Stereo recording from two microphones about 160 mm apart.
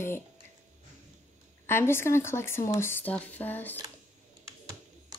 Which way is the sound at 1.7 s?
15° left (ahead or behind).